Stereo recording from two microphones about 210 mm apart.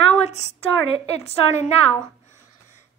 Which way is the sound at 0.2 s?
30° left (ahead or behind).